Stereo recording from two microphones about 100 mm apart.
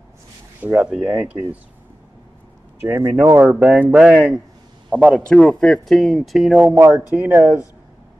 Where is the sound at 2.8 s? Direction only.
25° right (ahead or behind).